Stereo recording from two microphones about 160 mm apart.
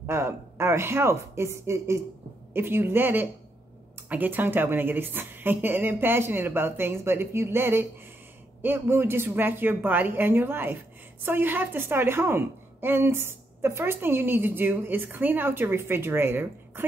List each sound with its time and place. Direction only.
0.0 s a woman's voice: 15° right (ahead or behind)